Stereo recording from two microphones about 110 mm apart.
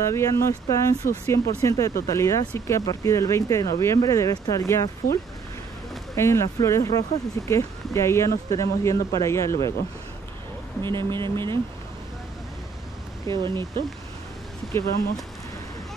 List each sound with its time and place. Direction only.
0.1 s speech: 25° left (ahead or behind)
6.1 s speech: 25° left (ahead or behind)
10.8 s speech: 45° right (ahead or behind)
13.3 s speech: 45° right (ahead or behind)